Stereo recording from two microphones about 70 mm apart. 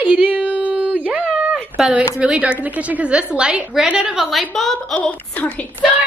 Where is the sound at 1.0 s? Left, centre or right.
Centre.